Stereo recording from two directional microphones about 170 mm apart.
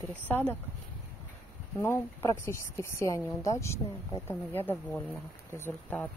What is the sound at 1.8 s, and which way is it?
Speech, 15° left (ahead or behind).